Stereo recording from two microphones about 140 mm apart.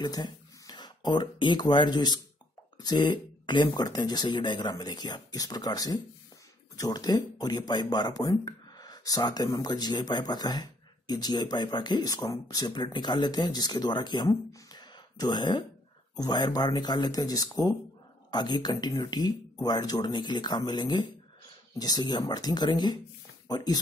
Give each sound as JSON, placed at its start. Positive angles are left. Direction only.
{"t": 0.0, "sound": "speech", "side_deg": 30}